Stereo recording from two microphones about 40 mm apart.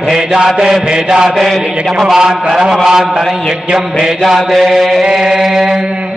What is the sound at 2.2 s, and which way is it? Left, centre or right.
Mantra, centre.